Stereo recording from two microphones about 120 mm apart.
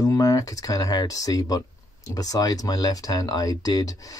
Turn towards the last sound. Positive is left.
turn(degrees=30)  # may be behind; listen again after turning